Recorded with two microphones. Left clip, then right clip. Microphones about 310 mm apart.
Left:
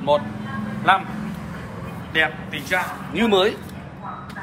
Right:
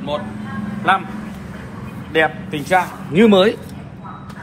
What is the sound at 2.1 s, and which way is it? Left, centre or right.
A man's voice, centre.